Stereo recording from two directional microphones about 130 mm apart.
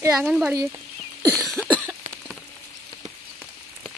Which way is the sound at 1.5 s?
10° left (ahead or behind).